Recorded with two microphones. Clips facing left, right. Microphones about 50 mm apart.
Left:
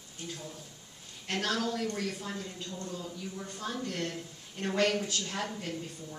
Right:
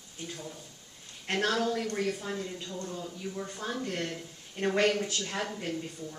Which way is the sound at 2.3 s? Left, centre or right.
Centre.